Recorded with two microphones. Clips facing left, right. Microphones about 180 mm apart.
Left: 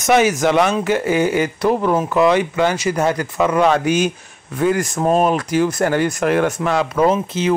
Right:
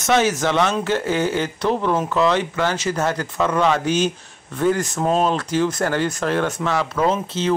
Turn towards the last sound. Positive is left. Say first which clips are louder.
# left 4 dB
turn(degrees=10)  # may be behind; listen again after turning